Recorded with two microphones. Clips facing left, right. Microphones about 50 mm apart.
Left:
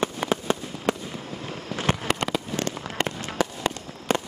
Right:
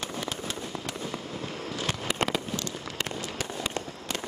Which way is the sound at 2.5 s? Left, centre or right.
Left.